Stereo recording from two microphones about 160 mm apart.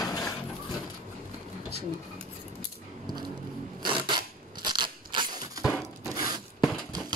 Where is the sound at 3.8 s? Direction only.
30° right (ahead or behind).